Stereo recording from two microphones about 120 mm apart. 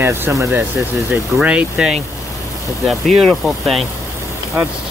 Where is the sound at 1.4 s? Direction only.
10° right (ahead or behind).